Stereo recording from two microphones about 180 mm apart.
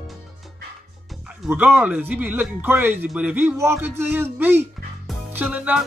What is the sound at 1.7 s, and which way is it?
Speech, 5° right (ahead or behind).